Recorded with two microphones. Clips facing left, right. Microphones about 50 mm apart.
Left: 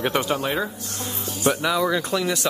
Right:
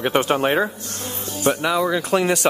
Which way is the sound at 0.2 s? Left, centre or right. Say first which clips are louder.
Right 5 dB; right.